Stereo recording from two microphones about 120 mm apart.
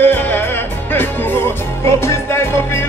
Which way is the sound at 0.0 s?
15° left (ahead or behind).